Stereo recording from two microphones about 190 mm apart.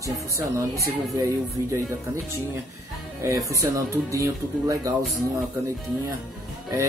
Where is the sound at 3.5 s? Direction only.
15° right (ahead or behind).